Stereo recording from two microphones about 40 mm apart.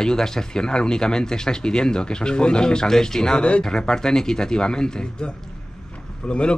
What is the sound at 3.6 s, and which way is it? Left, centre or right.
A man's voice, centre.